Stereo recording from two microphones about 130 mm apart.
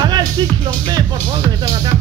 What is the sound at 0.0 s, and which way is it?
Music, 30° right (ahead or behind).